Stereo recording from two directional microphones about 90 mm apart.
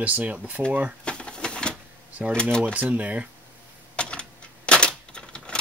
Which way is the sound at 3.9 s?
10° left (ahead or behind).